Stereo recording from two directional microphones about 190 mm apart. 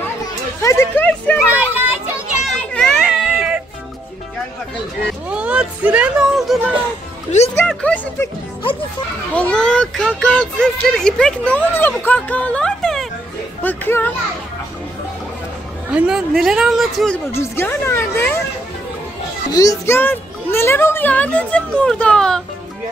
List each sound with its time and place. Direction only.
0.6 s a child's voice: 15° left (ahead or behind)
1.5 s a sound: 10° right (ahead or behind)
2.7 s a sound: 5° left (ahead or behind)
5.3 s speech: 5° right (ahead or behind)
7.2 s speech: 35° left (ahead or behind)
7.5 s a child's voice: 5° left (ahead or behind)
9.3 s a child's voice: 5° left (ahead or behind)
15.9 s speech: 5° right (ahead or behind)
17.3 s a child's voice: 15° left (ahead or behind)
19.5 s a child's voice: 15° left (ahead or behind)